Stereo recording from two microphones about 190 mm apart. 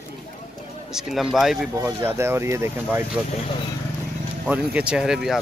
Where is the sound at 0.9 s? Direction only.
Centre (ahead or behind).